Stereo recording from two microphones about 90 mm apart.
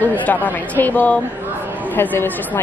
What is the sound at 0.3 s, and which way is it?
A woman's voice, 20° left (ahead or behind).